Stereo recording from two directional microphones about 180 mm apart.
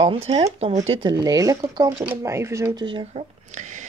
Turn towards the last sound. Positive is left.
turn(degrees=-45)  # may be behind; listen again after turning